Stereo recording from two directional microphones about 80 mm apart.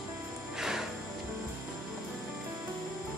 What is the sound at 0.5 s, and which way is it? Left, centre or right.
Music, centre.